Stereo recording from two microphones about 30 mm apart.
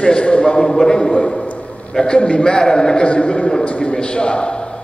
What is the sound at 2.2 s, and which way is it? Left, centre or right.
Speech, left.